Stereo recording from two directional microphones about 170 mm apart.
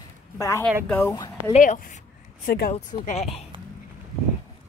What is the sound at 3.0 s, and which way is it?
Speech, 40° left (ahead or behind).